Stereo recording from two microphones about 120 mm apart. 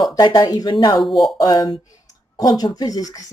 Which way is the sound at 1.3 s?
35° left (ahead or behind).